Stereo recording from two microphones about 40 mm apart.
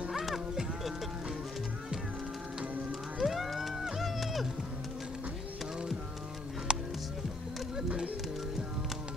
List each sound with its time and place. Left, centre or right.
0.2 s livestock: centre
3.2 s music: centre
6.7 s music: right